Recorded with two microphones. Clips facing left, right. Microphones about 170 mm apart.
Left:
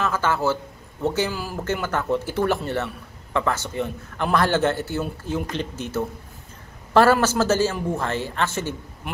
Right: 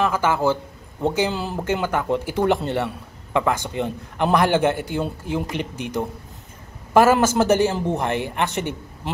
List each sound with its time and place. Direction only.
0.0 s a man's voice: 10° right (ahead or behind)
1.3 s speech: 25° right (ahead or behind)
1.6 s a man's voice: 10° right (ahead or behind)